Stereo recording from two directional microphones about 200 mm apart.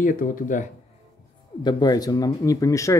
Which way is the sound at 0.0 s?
40° left (ahead or behind).